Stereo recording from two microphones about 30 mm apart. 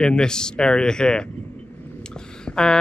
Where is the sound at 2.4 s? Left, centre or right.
Left.